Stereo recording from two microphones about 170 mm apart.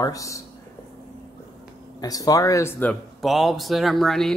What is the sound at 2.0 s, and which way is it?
Speech, 20° left (ahead or behind).